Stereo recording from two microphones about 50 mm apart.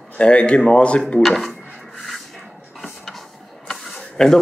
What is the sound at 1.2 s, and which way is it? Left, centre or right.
Drawer open or close, centre.